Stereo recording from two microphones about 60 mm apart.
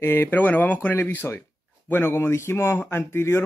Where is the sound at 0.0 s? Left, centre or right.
Left.